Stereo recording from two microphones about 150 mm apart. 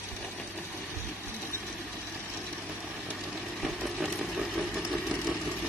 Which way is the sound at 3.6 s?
Centre (ahead or behind).